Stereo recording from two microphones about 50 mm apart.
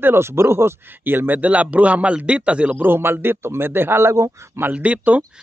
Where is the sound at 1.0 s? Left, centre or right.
Right.